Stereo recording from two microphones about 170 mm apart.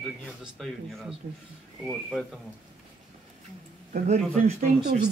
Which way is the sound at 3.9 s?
45° right (ahead or behind).